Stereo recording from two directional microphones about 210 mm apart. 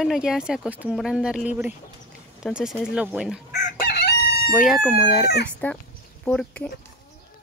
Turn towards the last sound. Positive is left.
turn(degrees=5)  # may be behind; listen again after turning